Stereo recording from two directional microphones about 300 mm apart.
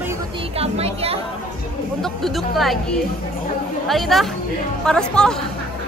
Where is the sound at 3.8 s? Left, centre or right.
Centre.